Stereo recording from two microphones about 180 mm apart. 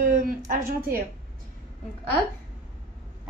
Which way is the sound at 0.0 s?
50° right (ahead or behind).